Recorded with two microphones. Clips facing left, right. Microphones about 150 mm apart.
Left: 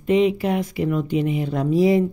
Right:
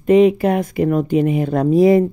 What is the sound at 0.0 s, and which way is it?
Speech, 50° right (ahead or behind).